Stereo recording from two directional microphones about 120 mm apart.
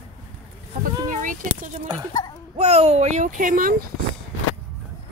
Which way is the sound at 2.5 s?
60° right (ahead or behind).